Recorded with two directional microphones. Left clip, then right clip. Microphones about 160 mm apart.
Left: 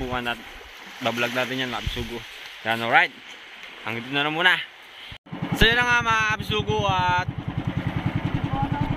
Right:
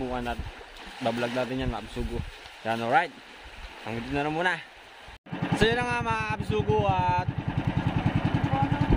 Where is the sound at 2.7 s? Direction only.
Centre (ahead or behind).